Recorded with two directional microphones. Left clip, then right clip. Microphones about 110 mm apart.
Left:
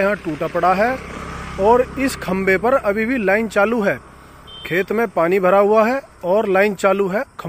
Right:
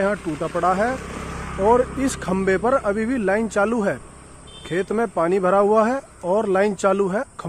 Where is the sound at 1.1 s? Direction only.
70° left (ahead or behind).